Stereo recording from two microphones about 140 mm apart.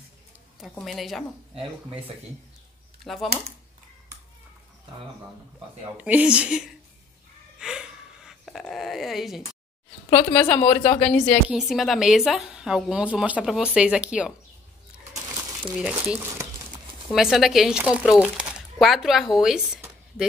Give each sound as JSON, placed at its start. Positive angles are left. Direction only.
{"t": 0.7, "sound": "speech", "side_deg": 0}
{"t": 1.5, "sound": "speech", "side_deg": -40}
{"t": 3.0, "sound": "speech", "side_deg": 0}
{"t": 5.9, "sound": "a woman's voice", "side_deg": -10}
{"t": 7.5, "sound": "a sound", "side_deg": -5}
{"t": 10.1, "sound": "speech", "side_deg": 20}
{"t": 11.4, "sound": "speech", "side_deg": -5}
{"t": 15.8, "sound": "a woman's voice", "side_deg": -10}
{"t": 17.1, "sound": "speech", "side_deg": 0}
{"t": 19.3, "sound": "a sound", "side_deg": -5}